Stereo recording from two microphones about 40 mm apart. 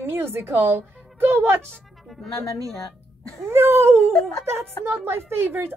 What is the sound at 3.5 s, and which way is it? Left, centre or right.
A woman's voice, right.